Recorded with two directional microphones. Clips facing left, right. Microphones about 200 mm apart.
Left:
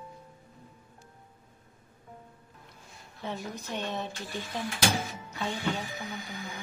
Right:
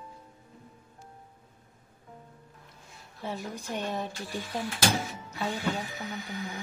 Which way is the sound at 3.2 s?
10° right (ahead or behind).